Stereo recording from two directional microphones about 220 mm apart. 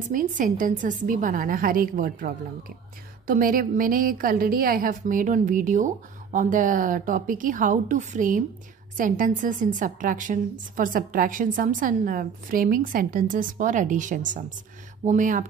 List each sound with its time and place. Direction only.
0.1 s a woman's voice: 35° right (ahead or behind)